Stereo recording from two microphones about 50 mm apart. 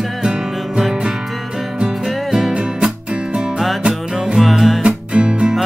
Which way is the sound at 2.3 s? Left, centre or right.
Centre.